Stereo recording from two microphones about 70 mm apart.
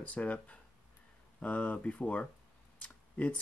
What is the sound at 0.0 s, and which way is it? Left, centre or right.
Speech, centre.